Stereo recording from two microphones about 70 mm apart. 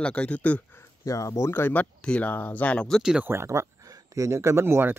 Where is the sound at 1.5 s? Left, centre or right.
Left.